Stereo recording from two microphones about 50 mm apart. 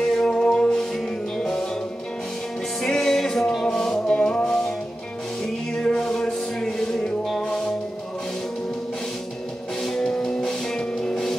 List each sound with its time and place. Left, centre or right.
0.0 s music: centre
2.8 s music: centre
9.8 s music: centre